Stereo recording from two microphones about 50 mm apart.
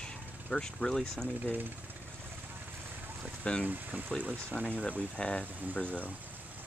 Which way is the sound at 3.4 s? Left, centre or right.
Left.